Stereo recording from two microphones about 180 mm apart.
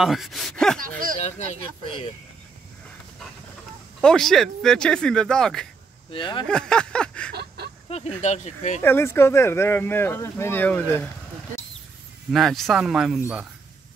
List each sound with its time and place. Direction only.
0.0 s speech: centre (ahead or behind)
1.2 s speech: 40° left (ahead or behind)
4.0 s speech: 5° left (ahead or behind)
6.1 s speech: 25° left (ahead or behind)
6.4 s speech: 5° left (ahead or behind)
7.3 s a sound: 65° right (ahead or behind)
7.9 s speech: 35° left (ahead or behind)
8.8 s speech: 15° left (ahead or behind)
12.3 s speech: centre (ahead or behind)